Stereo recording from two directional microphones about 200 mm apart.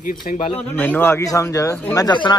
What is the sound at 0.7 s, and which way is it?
Speech, 10° left (ahead or behind).